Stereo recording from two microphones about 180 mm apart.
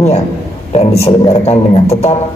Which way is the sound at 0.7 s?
35° left (ahead or behind).